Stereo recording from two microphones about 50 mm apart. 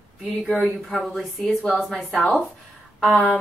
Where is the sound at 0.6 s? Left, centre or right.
Centre.